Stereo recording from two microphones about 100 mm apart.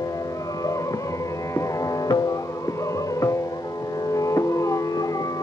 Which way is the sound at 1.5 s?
35° left (ahead or behind).